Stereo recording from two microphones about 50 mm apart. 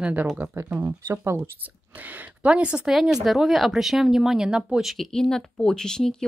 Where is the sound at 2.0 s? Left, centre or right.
Right; by 2.9 s centre.